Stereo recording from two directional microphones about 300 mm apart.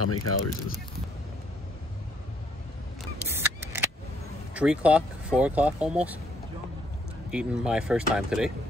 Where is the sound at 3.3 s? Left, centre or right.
Centre.